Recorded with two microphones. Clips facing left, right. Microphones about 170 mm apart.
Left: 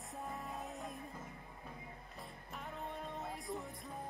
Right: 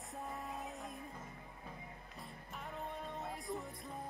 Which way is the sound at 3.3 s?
Centre (ahead or behind).